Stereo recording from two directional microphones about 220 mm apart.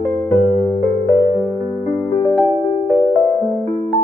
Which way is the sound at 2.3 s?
Centre (ahead or behind).